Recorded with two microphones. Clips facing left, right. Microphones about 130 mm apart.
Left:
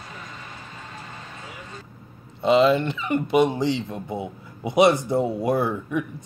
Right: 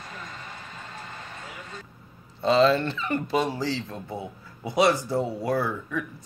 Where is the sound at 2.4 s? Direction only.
20° left (ahead or behind).